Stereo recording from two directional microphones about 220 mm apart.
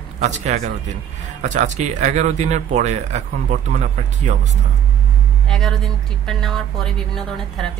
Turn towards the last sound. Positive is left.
turn(degrees=0)  # may be behind; listen again after turning